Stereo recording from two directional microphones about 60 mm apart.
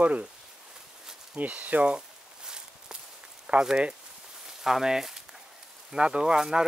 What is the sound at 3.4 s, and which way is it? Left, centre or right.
Speech, centre.